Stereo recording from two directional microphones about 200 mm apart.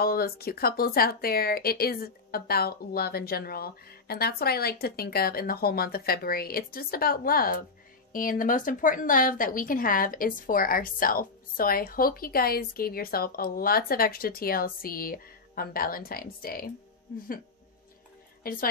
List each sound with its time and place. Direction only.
0.0 s a woman's voice: 50° left (ahead or behind)
18.4 s a woman's voice: 45° left (ahead or behind)